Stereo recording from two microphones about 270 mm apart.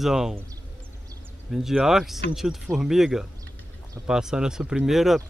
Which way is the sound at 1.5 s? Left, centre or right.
Centre.